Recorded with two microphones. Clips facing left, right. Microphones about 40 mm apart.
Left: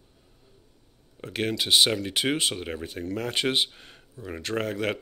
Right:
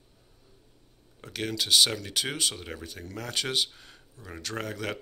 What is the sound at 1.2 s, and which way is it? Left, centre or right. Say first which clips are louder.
Speech: left 4 dB; left.